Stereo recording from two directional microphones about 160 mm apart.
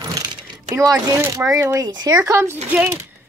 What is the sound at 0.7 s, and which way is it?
A child's voice, 20° right (ahead or behind).